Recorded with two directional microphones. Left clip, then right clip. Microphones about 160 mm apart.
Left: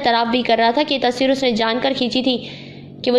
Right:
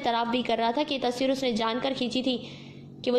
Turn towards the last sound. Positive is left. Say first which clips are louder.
# left 9 dB
turn(degrees=15)  # may be behind; listen again after turning